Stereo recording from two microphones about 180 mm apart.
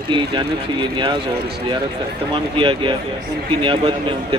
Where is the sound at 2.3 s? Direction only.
30° right (ahead or behind).